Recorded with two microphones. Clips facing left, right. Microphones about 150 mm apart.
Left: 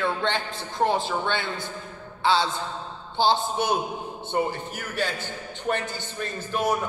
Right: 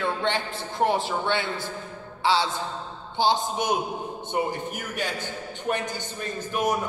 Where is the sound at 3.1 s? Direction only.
15° right (ahead or behind).